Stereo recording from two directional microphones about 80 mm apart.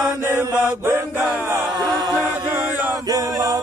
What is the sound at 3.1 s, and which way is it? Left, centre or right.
Chant, right.